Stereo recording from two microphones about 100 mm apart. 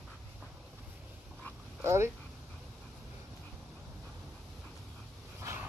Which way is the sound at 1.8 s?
25° right (ahead or behind).